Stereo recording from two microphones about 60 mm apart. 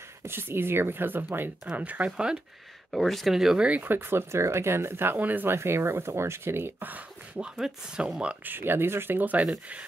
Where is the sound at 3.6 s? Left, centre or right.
Right.